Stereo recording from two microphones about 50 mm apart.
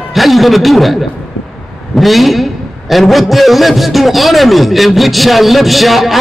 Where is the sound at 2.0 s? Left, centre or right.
Centre.